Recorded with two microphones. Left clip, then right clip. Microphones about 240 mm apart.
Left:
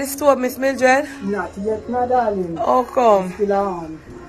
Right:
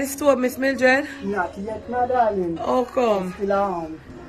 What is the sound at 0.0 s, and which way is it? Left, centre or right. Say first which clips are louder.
Speech: left 3 dB; centre.